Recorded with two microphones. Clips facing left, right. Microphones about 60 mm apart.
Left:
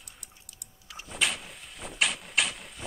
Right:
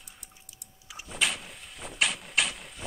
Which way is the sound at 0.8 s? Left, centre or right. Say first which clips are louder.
Even; centre.